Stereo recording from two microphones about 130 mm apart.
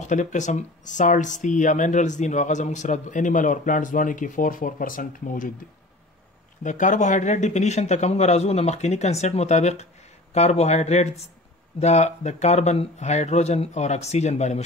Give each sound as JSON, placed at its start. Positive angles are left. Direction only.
{"t": 0.0, "sound": "speech", "side_deg": 70}
{"t": 6.6, "sound": "speech", "side_deg": 70}